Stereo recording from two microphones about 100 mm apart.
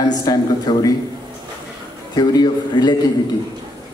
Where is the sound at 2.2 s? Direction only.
45° left (ahead or behind).